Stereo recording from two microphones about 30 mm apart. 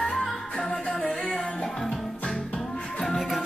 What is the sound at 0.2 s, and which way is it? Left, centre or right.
Music, left.